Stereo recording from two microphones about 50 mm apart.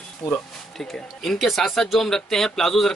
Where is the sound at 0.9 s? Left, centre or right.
Centre.